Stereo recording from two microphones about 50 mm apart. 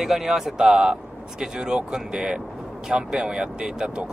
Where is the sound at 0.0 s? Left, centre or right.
Centre.